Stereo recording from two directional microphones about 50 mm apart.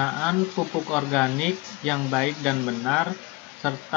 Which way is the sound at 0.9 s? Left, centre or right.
Centre.